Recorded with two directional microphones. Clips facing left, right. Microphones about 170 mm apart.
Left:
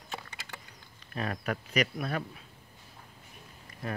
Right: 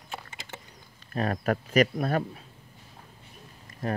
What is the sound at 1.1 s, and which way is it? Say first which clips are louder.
Speech: right 6 dB; 40° right (ahead or behind).